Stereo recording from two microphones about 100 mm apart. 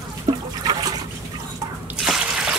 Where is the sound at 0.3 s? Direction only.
35° right (ahead or behind).